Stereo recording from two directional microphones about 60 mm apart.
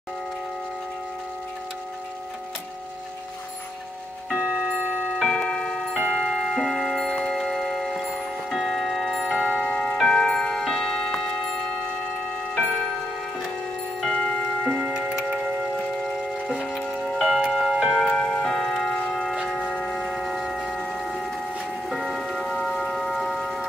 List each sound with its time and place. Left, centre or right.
4.4 s clock: centre
5.2 s tubular bells: centre
5.9 s clock: centre
7.2 s music: centre
8.5 s tubular bells: centre
14.1 s tick-tock: centre
14.7 s tick-tock: centre
15.0 s tick-tock: centre
16.6 s music: centre
17.9 s tick-tock: centre
19.2 s a sound: centre
21.8 s music: centre